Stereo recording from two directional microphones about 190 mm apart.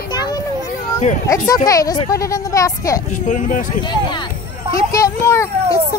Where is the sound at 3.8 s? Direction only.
25° left (ahead or behind).